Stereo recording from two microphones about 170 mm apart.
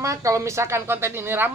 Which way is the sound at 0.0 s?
20° right (ahead or behind).